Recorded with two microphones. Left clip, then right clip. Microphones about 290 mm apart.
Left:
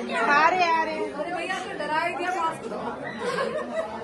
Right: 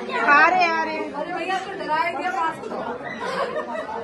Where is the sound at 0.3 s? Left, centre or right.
Right.